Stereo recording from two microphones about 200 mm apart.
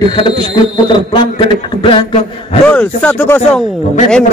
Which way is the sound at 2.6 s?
5° left (ahead or behind).